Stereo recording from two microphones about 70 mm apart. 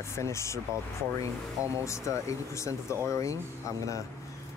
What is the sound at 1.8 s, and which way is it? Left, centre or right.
Speech, left.